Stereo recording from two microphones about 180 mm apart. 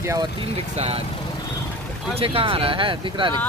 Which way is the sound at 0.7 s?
35° right (ahead or behind).